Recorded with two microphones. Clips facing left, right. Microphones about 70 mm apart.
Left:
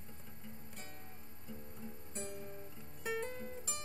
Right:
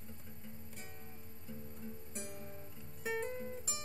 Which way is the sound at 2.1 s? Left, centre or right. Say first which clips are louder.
Left 5 dB; centre.